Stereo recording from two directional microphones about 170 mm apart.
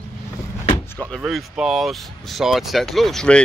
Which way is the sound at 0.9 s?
5° left (ahead or behind).